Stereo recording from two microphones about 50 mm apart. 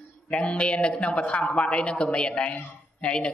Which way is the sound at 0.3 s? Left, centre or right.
Left.